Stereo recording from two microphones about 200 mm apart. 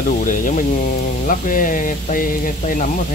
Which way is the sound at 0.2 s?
40° left (ahead or behind).